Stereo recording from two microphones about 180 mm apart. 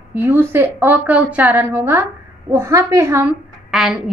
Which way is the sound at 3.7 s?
Centre (ahead or behind).